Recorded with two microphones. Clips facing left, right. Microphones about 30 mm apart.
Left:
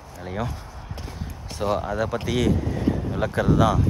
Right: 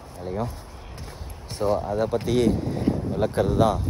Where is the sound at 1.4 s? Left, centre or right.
Left.